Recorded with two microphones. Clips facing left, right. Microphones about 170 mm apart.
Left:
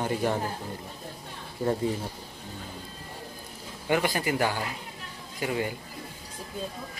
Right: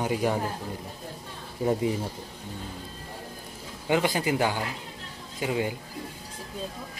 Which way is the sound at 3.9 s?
15° right (ahead or behind).